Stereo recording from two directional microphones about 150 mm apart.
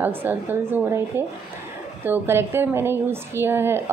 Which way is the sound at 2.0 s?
15° right (ahead or behind).